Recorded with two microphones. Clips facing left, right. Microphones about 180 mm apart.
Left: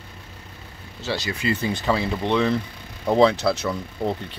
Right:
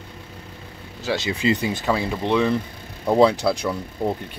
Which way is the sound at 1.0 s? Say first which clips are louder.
Right 4 dB; 20° right (ahead or behind).